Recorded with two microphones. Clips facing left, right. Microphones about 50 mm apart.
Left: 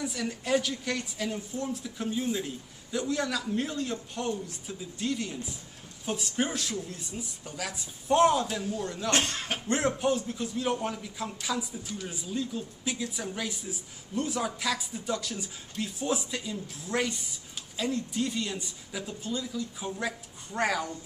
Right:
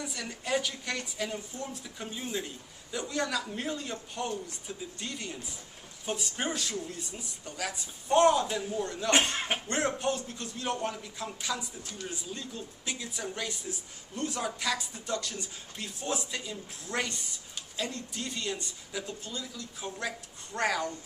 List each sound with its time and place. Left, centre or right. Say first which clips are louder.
0.0 s a man's voice: left 4 dB; centre
9.1 s speech: right 3 dB; centre
9.7 s a man's voice: left 5 dB; centre